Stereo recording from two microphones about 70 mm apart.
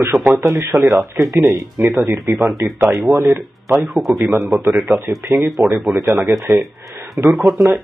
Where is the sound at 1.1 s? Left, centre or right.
Right.